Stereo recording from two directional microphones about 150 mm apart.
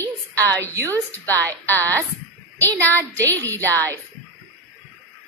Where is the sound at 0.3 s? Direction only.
20° right (ahead or behind).